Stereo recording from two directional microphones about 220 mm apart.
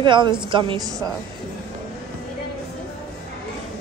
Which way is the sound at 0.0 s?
20° right (ahead or behind).